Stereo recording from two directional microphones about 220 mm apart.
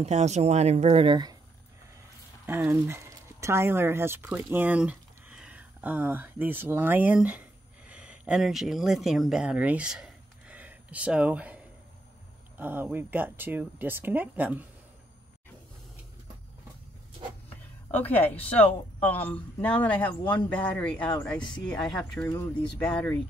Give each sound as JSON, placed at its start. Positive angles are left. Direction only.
{"t": 0.0, "sound": "speech", "side_deg": -30}
{"t": 2.4, "sound": "speech", "side_deg": -10}
{"t": 17.9, "sound": "speech", "side_deg": 10}
{"t": 22.3, "sound": "speech", "side_deg": 15}
{"t": 22.8, "sound": "speech", "side_deg": 5}